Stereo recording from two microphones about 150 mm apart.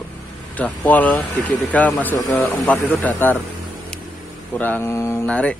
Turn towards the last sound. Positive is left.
turn(degrees=10)  # may be behind; listen again after turning